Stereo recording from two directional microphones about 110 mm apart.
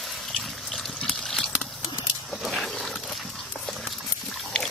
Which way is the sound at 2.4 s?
Centre (ahead or behind).